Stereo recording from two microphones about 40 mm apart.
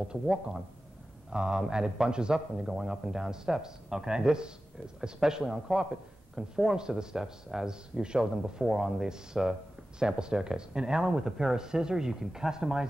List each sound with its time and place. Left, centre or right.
0.1 s speech: centre
2.3 s speech: centre